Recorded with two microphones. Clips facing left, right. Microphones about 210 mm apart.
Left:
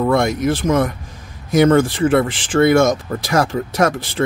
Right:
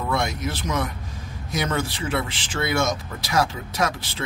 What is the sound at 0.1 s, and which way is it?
Speech, 50° left (ahead or behind).